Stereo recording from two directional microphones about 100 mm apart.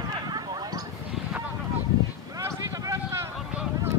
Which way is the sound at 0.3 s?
40° right (ahead or behind).